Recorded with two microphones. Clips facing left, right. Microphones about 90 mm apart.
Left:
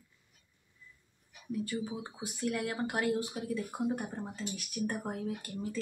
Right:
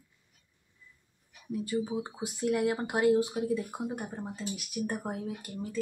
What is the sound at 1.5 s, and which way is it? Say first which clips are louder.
Speech: right 4 dB; 20° right (ahead or behind).